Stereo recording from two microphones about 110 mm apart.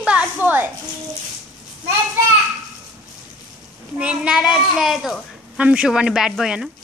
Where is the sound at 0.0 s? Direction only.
10° right (ahead or behind).